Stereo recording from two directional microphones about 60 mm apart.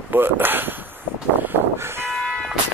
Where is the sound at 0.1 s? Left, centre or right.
Right.